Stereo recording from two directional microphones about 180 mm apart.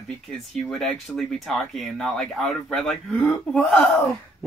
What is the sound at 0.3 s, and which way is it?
Speech, 5° left (ahead or behind).